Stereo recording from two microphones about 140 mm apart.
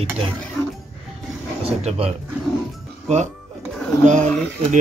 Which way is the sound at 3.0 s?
55° right (ahead or behind).